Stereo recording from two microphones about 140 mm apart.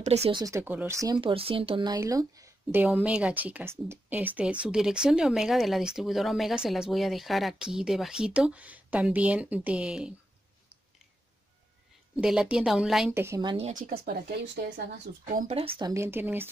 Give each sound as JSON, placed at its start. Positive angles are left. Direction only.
{"t": 0.0, "sound": "speech", "side_deg": -50}
{"t": 0.3, "sound": "speech", "side_deg": -30}
{"t": 0.6, "sound": "speech", "side_deg": -15}
{"t": 1.2, "sound": "speech", "side_deg": -40}
{"t": 2.0, "sound": "speech", "side_deg": -25}
{"t": 2.8, "sound": "speech", "side_deg": -10}
{"t": 12.2, "sound": "speech", "side_deg": -5}
{"t": 13.1, "sound": "speech", "side_deg": -20}
{"t": 13.7, "sound": "speech", "side_deg": -90}
{"t": 15.2, "sound": "speech", "side_deg": -70}
{"t": 15.5, "sound": "speech", "side_deg": -45}
{"t": 15.8, "sound": "speech", "side_deg": -20}